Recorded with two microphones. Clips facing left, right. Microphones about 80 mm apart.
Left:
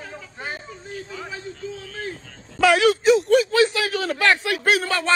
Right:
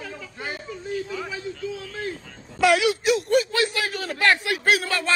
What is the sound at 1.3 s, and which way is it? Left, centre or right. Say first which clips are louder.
Speech: right 2 dB; left.